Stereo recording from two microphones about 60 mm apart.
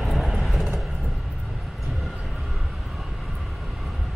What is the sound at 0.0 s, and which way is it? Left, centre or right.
Vehicle, centre.